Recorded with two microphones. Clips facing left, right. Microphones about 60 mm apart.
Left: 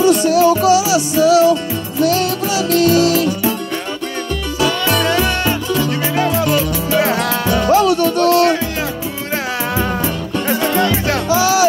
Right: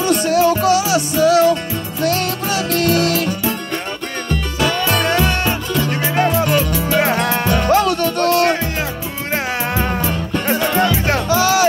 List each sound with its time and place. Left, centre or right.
0.0 s music: right
4.6 s music: right